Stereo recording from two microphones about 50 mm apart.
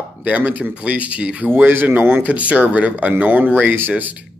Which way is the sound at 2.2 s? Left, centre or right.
Right.